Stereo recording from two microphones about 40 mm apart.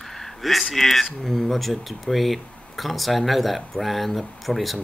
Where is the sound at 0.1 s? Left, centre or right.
Centre.